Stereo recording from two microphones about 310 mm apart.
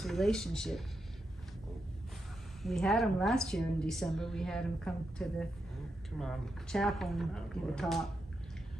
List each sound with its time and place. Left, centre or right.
0.0 s a woman's voice: centre
2.6 s a woman's voice: centre